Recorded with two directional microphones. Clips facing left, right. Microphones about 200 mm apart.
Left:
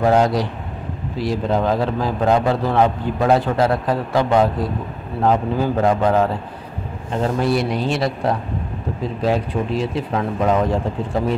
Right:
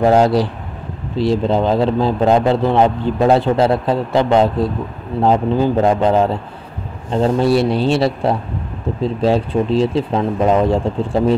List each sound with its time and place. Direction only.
0.0 s a man's voice: 30° right (ahead or behind)